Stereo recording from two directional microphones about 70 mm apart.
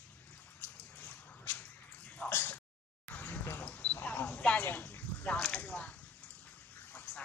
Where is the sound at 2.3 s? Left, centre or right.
Left.